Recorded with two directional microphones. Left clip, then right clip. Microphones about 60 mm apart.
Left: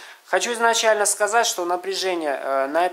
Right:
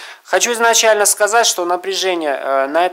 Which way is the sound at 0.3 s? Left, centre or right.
Right.